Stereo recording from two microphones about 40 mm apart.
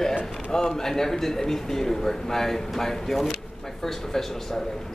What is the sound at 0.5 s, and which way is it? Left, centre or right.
A man's voice, centre.